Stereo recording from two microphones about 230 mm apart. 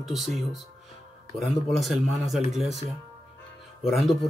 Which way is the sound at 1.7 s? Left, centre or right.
Centre.